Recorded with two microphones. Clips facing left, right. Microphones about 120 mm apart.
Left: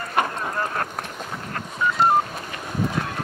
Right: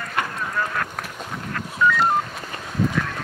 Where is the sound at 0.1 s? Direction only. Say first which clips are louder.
Left 3 dB; 35° left (ahead or behind).